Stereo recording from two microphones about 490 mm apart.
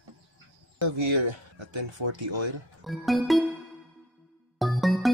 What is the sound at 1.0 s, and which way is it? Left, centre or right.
Speech, right.